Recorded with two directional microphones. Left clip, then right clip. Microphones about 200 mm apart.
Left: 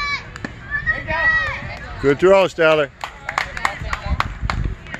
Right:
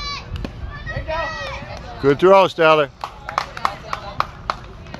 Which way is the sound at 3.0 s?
50° left (ahead or behind).